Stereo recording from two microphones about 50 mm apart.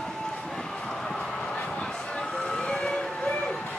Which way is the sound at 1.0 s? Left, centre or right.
Centre.